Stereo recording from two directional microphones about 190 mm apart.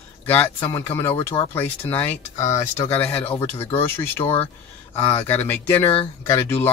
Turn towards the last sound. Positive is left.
turn(degrees=10)  # may be behind; listen again after turning